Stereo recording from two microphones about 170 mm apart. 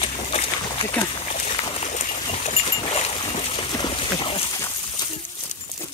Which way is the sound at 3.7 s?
30° left (ahead or behind).